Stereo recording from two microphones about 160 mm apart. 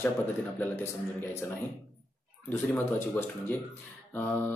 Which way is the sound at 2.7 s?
10° left (ahead or behind).